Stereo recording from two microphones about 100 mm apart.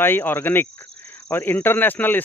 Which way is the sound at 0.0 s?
20° left (ahead or behind).